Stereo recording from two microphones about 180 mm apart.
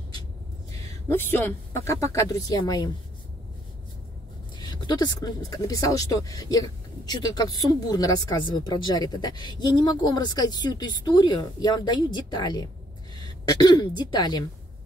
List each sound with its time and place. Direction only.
0.7 s speech: 20° left (ahead or behind)
4.6 s speech: 25° left (ahead or behind)